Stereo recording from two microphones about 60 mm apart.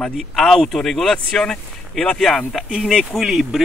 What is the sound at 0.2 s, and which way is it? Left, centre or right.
Speech, centre.